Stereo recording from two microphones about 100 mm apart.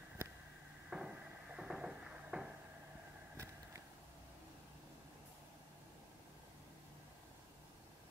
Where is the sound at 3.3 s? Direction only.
30° right (ahead or behind).